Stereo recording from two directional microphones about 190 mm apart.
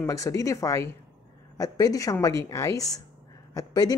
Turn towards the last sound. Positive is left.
turn(degrees=20)  # may be behind; listen again after turning